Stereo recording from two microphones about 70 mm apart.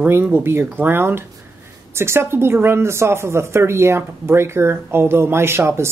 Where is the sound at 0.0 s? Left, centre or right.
Right.